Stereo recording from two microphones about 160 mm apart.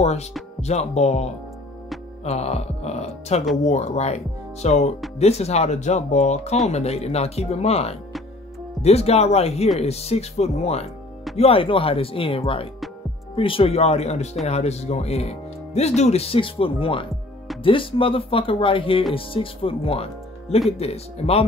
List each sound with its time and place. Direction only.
0.0 s speech: 45° left (ahead or behind)